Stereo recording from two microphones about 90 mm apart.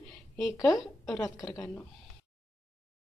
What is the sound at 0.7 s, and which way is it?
Speech, 10° left (ahead or behind).